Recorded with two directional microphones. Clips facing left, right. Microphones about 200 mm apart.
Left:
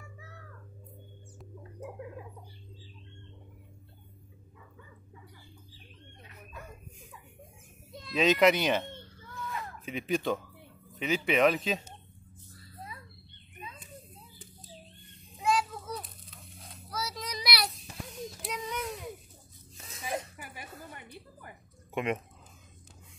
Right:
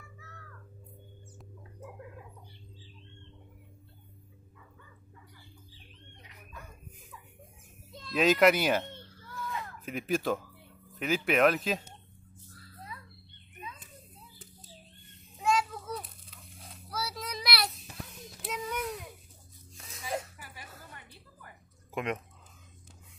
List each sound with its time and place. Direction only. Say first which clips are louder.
8.1 s a child's voice: even; centre (ahead or behind)
9.8 s speech: even; centre (ahead or behind)
15.4 s children playing: even; centre (ahead or behind)
18.4 s a sound: right 2 dB; 5° right (ahead or behind)
20.9 s a sound: left 6 dB; 20° left (ahead or behind)
21.9 s speech: left 2 dB; 5° left (ahead or behind)